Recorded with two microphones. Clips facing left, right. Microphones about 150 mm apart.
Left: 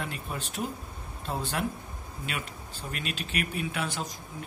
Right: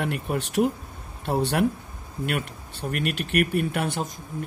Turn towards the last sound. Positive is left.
turn(degrees=-55)  # may be behind; listen again after turning